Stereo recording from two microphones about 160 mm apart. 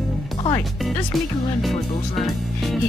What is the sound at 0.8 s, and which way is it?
Speech, centre (ahead or behind).